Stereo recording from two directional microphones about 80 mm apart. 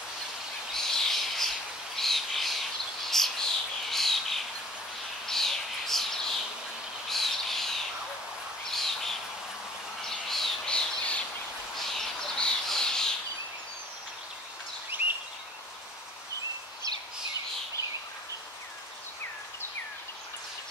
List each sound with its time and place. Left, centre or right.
0.7 s bird: centre
8.7 s bird: centre
14.9 s a sound: right